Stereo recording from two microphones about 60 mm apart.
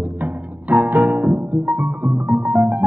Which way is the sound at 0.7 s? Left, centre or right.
Right.